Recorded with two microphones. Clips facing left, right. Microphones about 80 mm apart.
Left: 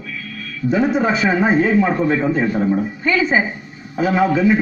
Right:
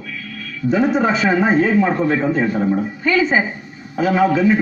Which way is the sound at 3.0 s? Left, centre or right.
Centre.